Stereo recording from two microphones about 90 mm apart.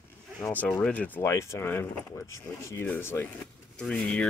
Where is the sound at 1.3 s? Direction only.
30° left (ahead or behind).